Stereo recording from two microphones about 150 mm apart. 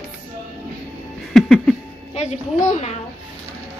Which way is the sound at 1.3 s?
Centre (ahead or behind).